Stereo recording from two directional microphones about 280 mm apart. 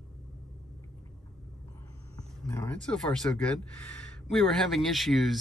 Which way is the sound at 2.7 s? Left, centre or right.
Centre.